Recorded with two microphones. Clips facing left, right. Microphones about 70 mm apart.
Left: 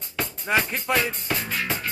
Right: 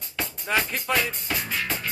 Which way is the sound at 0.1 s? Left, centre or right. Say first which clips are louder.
Left 2 dB; centre.